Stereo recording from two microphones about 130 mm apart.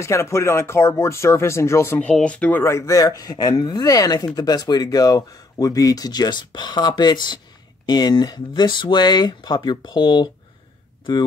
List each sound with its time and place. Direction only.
0.0 s speech: 20° left (ahead or behind)
2.0 s speech: 10° left (ahead or behind); by 10.3 s 35° left (ahead or behind)